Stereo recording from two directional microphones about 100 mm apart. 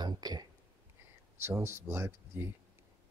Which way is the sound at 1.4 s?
25° right (ahead or behind).